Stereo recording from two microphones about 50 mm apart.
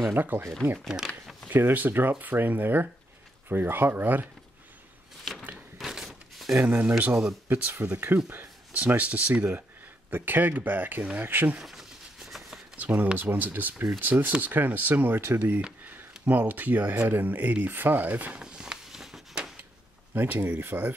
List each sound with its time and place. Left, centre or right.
0.1 s speech: right
0.8 s speech: centre
1.5 s speech: right
5.8 s a sound: centre
6.7 s speech: right
11.6 s a sound: centre
12.7 s speech: right
18.4 s a sound: centre
20.2 s speech: right